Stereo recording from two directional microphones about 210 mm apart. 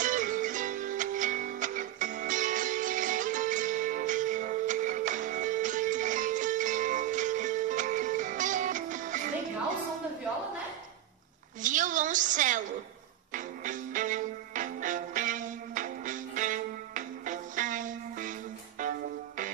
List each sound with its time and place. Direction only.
0.0 s music: 40° right (ahead or behind)
11.6 s a sound: 35° right (ahead or behind)
13.3 s music: 40° right (ahead or behind)